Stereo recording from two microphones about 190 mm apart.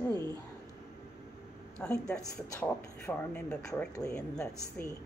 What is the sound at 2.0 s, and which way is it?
Speech, 5° left (ahead or behind).